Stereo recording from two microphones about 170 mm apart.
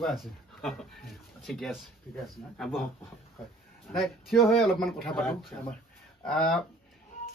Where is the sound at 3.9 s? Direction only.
Centre (ahead or behind).